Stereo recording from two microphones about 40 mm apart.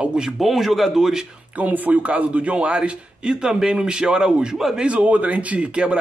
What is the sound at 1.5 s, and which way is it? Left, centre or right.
A man's voice, right.